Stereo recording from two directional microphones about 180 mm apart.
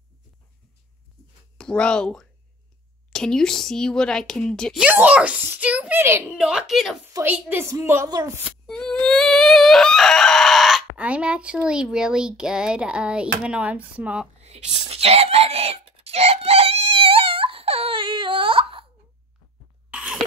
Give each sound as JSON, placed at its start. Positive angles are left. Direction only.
{"t": 1.6, "sound": "a woman's voice", "side_deg": 5}
{"t": 7.1, "sound": "a woman's voice", "side_deg": -15}
{"t": 8.6, "sound": "chicken", "side_deg": 5}
{"t": 14.4, "sound": "whispering", "side_deg": -40}
{"t": 19.9, "sound": "cough", "side_deg": -5}